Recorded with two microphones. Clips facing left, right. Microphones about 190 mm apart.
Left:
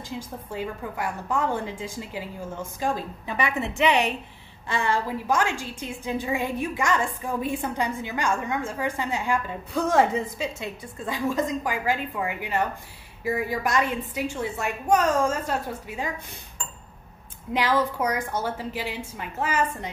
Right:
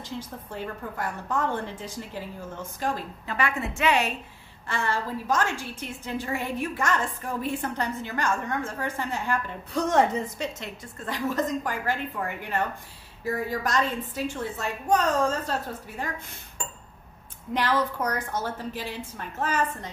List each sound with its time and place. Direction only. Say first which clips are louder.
0.5 s a woman's voice: left 4 dB; 10° left (ahead or behind)
17.6 s a woman's voice: left 2 dB; 10° left (ahead or behind)